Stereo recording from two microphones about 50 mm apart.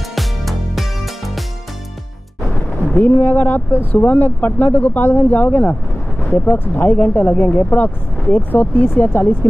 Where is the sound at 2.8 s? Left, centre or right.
Left.